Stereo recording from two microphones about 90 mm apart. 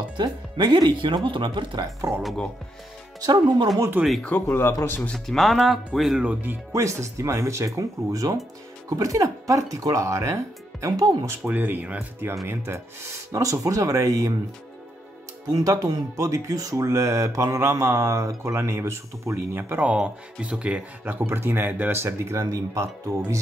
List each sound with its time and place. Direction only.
0.2 s speech: 55° right (ahead or behind)
3.2 s speech: 55° right (ahead or behind)
4.2 s speech: 20° left (ahead or behind)
5.1 s speech: 5° left (ahead or behind)
6.2 s speech: 20° right (ahead or behind)
6.7 s speech: 35° right (ahead or behind)
11.4 s speech: 20° right (ahead or behind)
13.3 s speech: 40° right (ahead or behind)
15.5 s speech: 40° right (ahead or behind)